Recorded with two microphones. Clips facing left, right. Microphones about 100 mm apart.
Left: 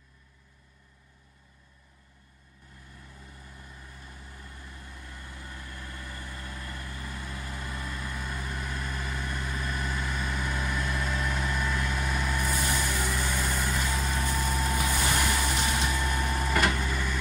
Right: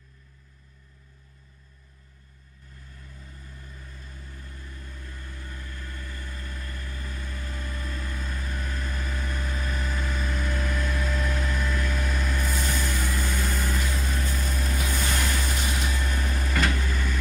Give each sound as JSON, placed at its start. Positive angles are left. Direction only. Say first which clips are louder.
{"t": 3.5, "sound": "vehicle", "louder": "right 1 dB", "side_deg": 15}
{"t": 13.5, "sound": "vehicle", "louder": "even", "side_deg": 0}
{"t": 14.2, "sound": "vehicle", "louder": "left 2 dB", "side_deg": 10}